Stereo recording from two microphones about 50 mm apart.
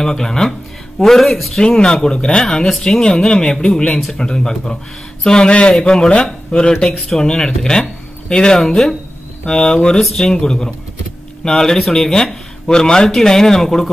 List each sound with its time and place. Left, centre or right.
0.0 s speech: centre
1.6 s speech: centre
2.4 s speech: centre